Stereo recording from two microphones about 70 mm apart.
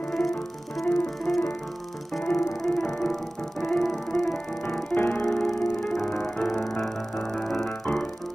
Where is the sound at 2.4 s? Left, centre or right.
Centre.